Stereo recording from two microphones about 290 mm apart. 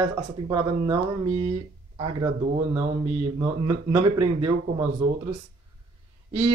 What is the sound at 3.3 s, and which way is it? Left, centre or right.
Speech, centre.